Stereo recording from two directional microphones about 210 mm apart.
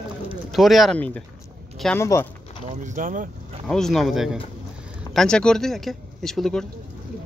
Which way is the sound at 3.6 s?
Centre (ahead or behind).